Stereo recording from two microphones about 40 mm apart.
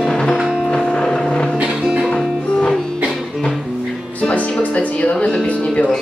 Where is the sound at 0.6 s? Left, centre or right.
Centre.